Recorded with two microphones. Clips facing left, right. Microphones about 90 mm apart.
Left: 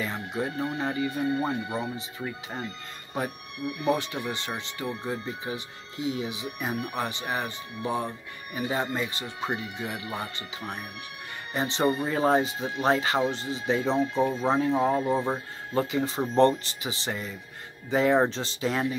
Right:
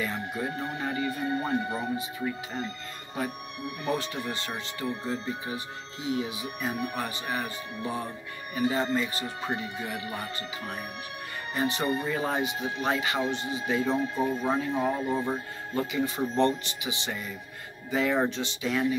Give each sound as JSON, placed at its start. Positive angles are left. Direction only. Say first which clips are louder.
{"t": 0.0, "sound": "speech", "louder": "left 1 dB", "side_deg": 20}
{"t": 3.9, "sound": "speech", "louder": "left 1 dB", "side_deg": 20}